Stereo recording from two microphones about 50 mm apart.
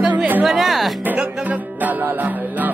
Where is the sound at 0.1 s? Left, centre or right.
Right.